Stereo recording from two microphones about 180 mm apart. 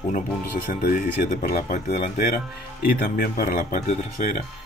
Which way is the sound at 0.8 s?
50° left (ahead or behind).